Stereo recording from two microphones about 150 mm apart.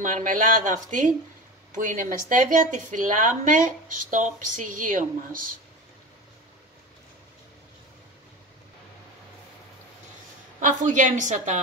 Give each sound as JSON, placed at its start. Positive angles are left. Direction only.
{"t": 0.0, "sound": "speech", "side_deg": -60}
{"t": 10.6, "sound": "speech", "side_deg": -55}